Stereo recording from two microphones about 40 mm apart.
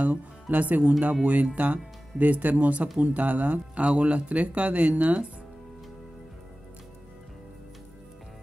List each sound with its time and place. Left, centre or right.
0.0 s speech: right
3.8 s speech: right